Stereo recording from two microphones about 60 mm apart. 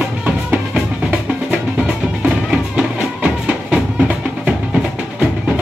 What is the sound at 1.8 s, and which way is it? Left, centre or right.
Music, centre.